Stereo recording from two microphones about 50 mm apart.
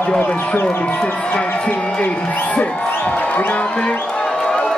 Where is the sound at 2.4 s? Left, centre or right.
Left.